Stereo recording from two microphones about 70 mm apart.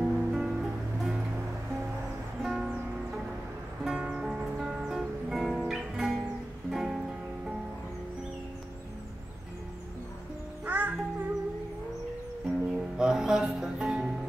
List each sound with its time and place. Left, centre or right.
0.0 s music: centre
2.4 s music: centre
3.8 s music: centre
10.6 s music: right
12.4 s music: centre